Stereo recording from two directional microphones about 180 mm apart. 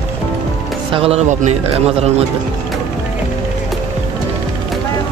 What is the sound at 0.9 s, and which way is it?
Speech, 35° right (ahead or behind).